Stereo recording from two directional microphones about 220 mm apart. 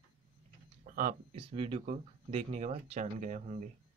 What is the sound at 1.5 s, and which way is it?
Speech, 25° right (ahead or behind).